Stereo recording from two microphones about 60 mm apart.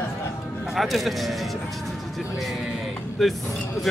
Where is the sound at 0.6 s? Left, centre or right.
Centre.